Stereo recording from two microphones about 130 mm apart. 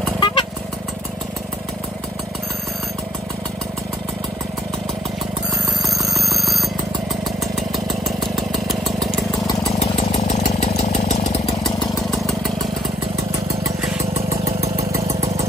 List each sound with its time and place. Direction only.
0.2 s vehicle: 40° left (ahead or behind)
5.9 s alarm clock: centre (ahead or behind)
8.0 s engine: centre (ahead or behind)
14.4 s engine: 25° right (ahead or behind)